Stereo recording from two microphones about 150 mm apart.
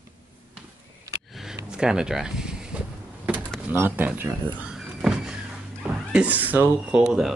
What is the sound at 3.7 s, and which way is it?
Power windows, 10° right (ahead or behind).